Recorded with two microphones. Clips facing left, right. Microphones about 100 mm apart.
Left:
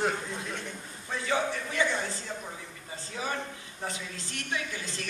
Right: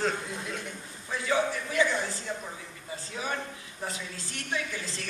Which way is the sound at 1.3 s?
30° left (ahead or behind).